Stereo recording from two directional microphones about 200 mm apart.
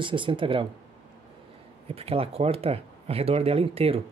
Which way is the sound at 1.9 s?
30° right (ahead or behind).